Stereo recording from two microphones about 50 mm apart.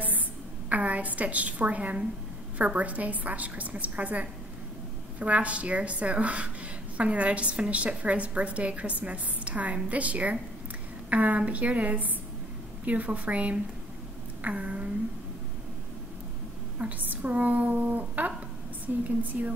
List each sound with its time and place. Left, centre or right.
0.7 s a woman's voice: right
14.4 s a sound: right
17.1 s a woman's voice: right